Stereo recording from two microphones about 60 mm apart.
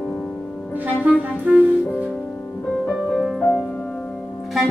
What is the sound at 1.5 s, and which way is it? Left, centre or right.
Music, centre.